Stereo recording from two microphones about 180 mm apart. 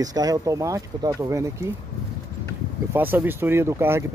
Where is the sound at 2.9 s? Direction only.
10° right (ahead or behind).